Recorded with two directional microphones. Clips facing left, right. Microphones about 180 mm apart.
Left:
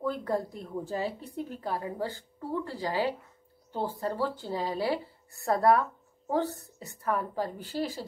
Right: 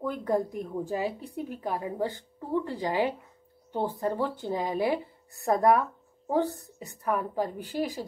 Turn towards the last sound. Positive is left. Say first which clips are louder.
# right 2 dB
turn(degrees=-15)  # may be behind; listen again after turning